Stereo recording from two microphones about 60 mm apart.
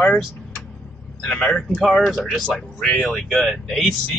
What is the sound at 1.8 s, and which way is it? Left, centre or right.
Speech, centre.